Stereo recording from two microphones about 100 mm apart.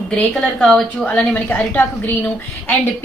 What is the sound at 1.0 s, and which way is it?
Speech, 15° left (ahead or behind).